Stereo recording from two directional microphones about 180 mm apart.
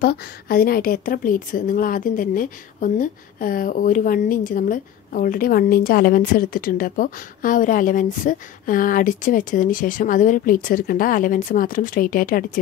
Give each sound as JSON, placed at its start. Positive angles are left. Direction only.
{"t": 0.0, "sound": "a woman's voice", "side_deg": 60}